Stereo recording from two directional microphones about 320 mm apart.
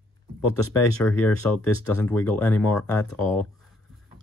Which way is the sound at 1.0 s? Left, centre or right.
Centre.